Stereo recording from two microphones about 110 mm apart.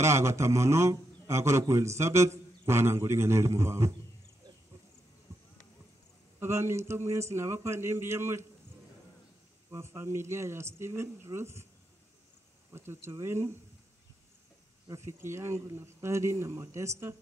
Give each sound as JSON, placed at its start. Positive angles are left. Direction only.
{"t": 0.0, "sound": "a man's voice", "side_deg": -25}
{"t": 5.3, "sound": "clip-clop", "side_deg": -25}
{"t": 6.4, "sound": "a man's voice", "side_deg": -25}
{"t": 9.7, "sound": "a man's voice", "side_deg": -25}
{"t": 12.7, "sound": "a man's voice", "side_deg": -25}
{"t": 14.9, "sound": "a man's voice", "side_deg": -25}